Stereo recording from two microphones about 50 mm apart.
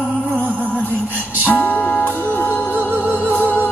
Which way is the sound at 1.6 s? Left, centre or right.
Left.